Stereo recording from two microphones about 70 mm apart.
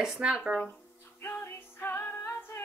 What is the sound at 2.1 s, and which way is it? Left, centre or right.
Singing, left.